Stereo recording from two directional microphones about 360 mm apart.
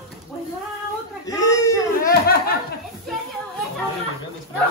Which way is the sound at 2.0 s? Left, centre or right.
Left.